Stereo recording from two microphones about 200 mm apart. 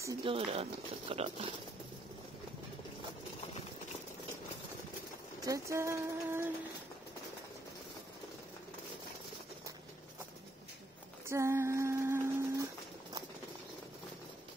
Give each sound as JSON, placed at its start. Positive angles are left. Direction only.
{"t": 0.2, "sound": "speech", "side_deg": -25}
{"t": 5.4, "sound": "speech", "side_deg": -15}
{"t": 11.2, "sound": "a sound", "side_deg": -15}